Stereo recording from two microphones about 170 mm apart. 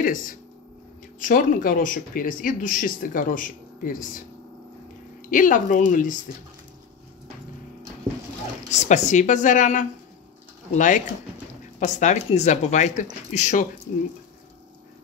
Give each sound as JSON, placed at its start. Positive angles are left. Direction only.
{"t": 0.0, "sound": "speech", "side_deg": 55}
{"t": 5.3, "sound": "speech", "side_deg": 50}
{"t": 8.6, "sound": "speech", "side_deg": 45}